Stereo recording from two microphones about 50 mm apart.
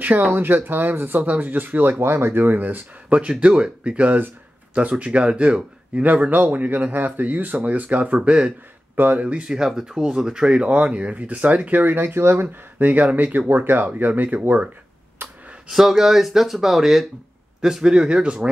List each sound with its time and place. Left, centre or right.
0.3 s speech: right
2.6 s speech: right
8.9 s speech: right
9.2 s speech: right
9.5 s speech: centre; by 14.4 s right
15.2 s a sound: right
15.7 s speech: centre